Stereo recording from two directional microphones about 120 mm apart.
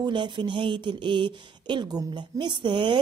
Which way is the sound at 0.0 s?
40° right (ahead or behind).